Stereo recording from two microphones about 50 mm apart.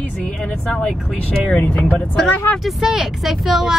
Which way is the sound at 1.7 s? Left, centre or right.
Left.